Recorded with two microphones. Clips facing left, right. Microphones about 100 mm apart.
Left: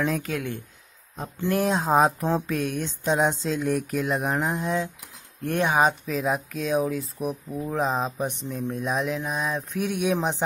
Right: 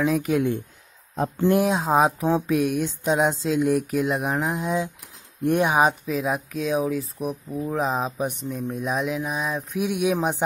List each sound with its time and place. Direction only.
0.0 s speech: 5° right (ahead or behind)
0.3 s speech: 20° right (ahead or behind)
1.6 s speech: centre (ahead or behind)
5.4 s speech: 15° right (ahead or behind)